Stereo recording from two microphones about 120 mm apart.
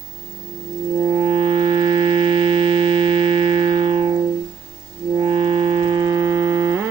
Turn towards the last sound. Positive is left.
turn(degrees=-30)  # may be behind; listen again after turning